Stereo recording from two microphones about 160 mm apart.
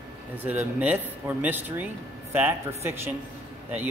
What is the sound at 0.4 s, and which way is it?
A man's voice, 10° right (ahead or behind).